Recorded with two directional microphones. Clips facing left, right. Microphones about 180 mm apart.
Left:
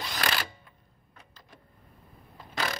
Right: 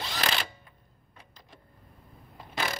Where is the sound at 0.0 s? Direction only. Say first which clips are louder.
Even; 25° right (ahead or behind).